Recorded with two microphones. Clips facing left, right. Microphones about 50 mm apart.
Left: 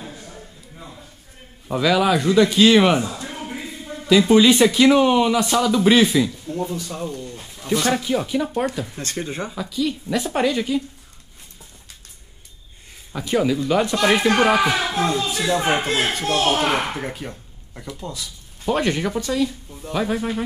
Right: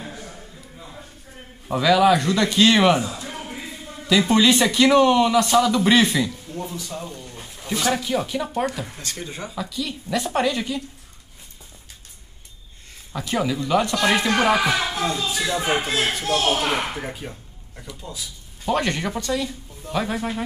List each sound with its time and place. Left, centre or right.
1.7 s speech: centre
3.3 s a sound: centre
4.3 s speech: centre
7.9 s speech: centre
8.9 s speech: left
9.6 s speech: centre
13.1 s speech: centre
14.2 s speech: centre
14.6 s speech: left
17.3 s speech: centre